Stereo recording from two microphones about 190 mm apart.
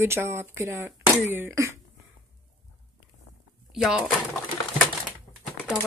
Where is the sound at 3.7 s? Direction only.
5° right (ahead or behind).